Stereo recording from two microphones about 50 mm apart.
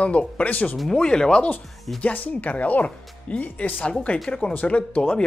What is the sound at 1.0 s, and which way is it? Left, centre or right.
Speech, centre.